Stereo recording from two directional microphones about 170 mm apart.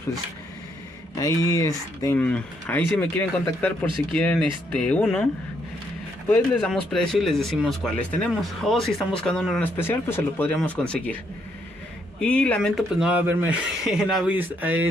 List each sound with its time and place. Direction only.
1.1 s speech: 20° left (ahead or behind)
2.1 s speech: 5° left (ahead or behind)
12.2 s speech: 5° left (ahead or behind); by 14.9 s 10° right (ahead or behind)